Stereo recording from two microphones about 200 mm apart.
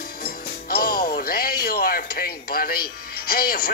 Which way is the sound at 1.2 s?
50° left (ahead or behind).